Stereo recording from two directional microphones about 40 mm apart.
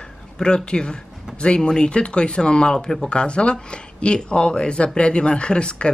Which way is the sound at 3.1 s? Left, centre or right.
Left.